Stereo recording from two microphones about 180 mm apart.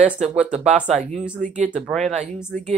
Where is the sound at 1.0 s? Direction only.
40° right (ahead or behind).